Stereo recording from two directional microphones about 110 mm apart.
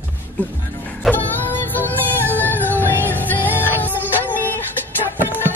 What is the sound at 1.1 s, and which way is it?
Music, 15° left (ahead or behind).